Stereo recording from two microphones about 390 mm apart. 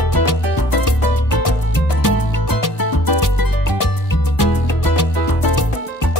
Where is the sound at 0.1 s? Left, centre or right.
Left.